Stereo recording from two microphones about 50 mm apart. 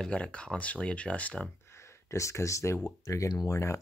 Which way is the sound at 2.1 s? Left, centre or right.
Left.